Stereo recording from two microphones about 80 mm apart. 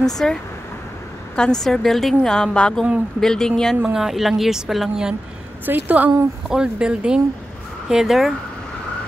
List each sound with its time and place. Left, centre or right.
0.0 s a woman's voice: centre
3.9 s speech: centre
5.7 s a woman's voice: right; by 8.4 s centre